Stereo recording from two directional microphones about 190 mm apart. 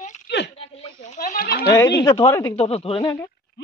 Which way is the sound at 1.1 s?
45° left (ahead or behind).